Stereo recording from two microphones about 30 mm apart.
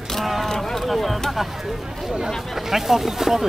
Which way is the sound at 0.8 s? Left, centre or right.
Centre.